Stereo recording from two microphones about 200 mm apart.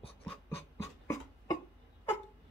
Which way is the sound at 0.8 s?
15° left (ahead or behind).